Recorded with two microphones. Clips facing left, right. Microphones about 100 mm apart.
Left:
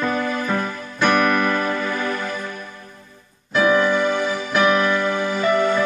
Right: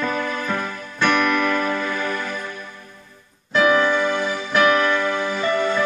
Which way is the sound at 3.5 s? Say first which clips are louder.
Even; 15° left (ahead or behind).